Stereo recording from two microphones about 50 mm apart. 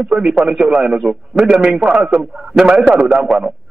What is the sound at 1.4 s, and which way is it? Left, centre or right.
Speech, right.